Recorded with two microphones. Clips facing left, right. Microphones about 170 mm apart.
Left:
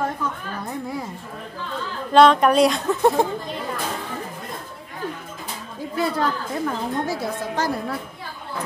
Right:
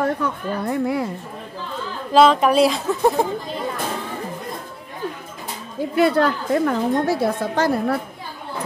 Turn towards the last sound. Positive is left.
turn(degrees=-65)  # may be behind; listen again after turning